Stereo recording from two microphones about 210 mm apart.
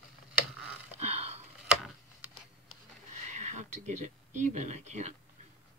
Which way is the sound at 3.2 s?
35° right (ahead or behind).